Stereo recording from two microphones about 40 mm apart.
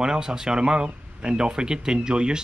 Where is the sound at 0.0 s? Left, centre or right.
Centre.